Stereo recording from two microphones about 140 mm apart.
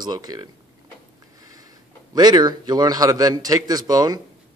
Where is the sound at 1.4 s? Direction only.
25° right (ahead or behind).